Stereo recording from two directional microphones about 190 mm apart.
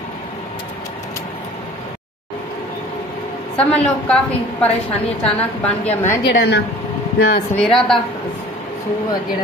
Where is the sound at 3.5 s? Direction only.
5° left (ahead or behind).